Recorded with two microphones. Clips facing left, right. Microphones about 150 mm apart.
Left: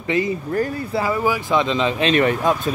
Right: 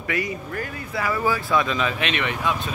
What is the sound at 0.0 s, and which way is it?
A man's voice, 25° left (ahead or behind).